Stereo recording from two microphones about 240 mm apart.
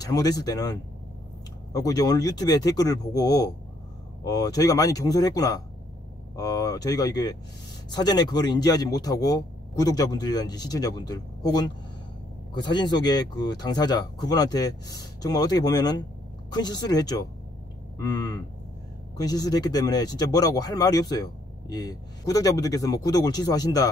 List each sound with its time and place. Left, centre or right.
0.0 s speech: centre